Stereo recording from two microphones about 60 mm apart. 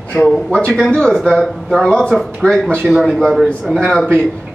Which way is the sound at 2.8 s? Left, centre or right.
Centre.